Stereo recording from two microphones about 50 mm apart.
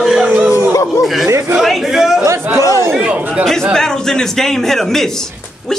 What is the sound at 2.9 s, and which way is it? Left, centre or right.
Speech, right.